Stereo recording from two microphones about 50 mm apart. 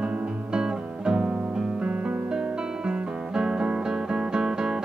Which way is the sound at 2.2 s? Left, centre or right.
Right.